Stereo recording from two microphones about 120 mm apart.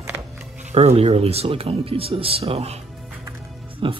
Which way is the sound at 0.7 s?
60° right (ahead or behind).